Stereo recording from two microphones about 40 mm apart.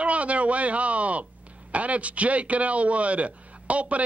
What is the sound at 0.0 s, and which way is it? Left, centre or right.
A man's voice, right.